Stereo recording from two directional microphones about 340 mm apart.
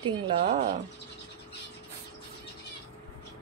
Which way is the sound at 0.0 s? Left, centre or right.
Centre.